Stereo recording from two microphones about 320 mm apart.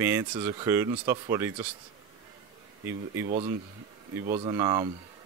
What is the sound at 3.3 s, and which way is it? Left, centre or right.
Speech, centre.